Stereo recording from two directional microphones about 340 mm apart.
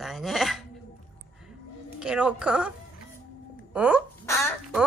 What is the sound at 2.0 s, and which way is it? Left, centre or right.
A woman's voice, centre.